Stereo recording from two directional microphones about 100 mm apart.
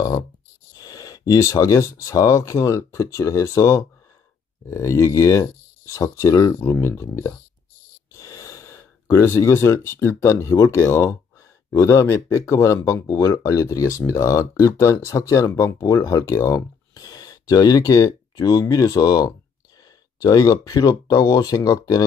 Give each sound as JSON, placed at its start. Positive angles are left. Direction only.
{"t": 0.7, "sound": "speech", "side_deg": 40}